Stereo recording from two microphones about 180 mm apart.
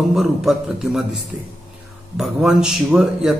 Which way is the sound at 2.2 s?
5° right (ahead or behind).